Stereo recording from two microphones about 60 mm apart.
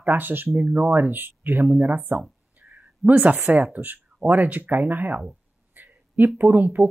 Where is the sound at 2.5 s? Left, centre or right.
Right.